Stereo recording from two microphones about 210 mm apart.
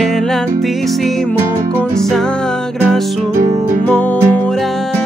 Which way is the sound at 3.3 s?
35° right (ahead or behind).